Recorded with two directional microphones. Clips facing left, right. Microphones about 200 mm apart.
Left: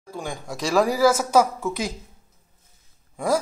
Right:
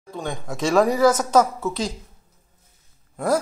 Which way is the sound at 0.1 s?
Centre (ahead or behind).